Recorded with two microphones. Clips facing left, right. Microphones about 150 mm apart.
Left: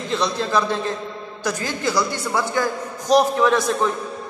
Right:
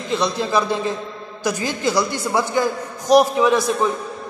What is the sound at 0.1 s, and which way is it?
A man's voice, 10° right (ahead or behind).